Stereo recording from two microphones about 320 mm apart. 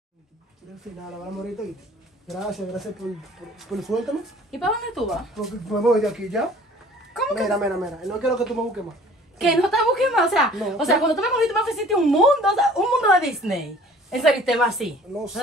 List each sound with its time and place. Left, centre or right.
2.2 s a woman's voice: centre